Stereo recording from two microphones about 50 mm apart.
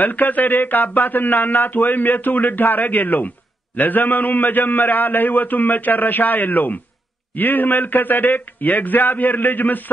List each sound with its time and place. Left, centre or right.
0.0 s speech: left